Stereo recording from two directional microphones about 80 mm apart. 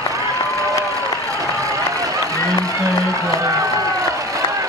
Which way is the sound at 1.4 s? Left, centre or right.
Right.